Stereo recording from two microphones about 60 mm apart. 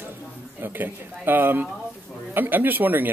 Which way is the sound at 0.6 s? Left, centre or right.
Right.